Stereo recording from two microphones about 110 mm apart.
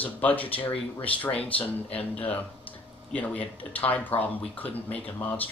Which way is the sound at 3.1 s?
15° left (ahead or behind).